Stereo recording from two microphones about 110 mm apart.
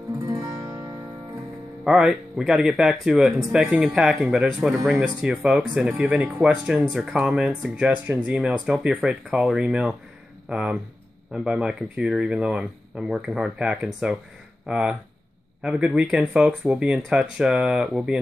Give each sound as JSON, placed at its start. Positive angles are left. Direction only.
{"t": 0.3, "sound": "music", "side_deg": -30}
{"t": 1.9, "sound": "speech", "side_deg": -5}